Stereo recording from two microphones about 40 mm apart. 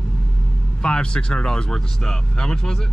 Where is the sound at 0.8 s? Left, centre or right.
Left.